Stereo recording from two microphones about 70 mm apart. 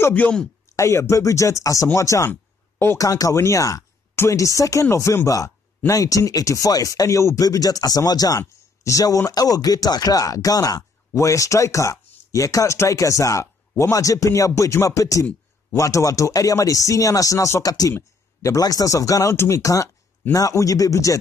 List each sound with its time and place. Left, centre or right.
0.7 s speech: left
4.1 s a sound: left
4.4 s speech: left
7.4 s speech: left
19.3 s speech: left